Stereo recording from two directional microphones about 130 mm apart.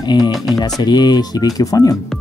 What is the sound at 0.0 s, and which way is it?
Speech, 35° left (ahead or behind).